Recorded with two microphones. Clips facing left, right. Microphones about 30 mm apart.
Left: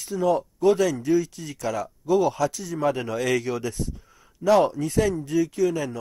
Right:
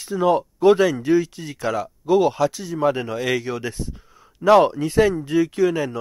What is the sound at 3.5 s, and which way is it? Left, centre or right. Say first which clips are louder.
Speech: right 1 dB; right.